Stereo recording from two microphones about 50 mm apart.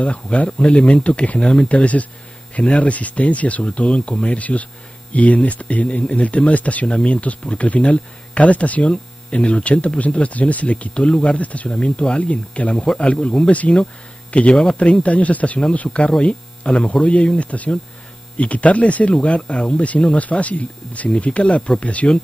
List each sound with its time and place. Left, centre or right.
0.0 s speech: left
12.7 s speech: centre
13.0 s speech: left